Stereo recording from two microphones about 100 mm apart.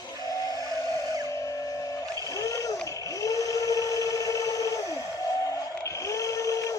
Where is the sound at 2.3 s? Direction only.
35° left (ahead or behind).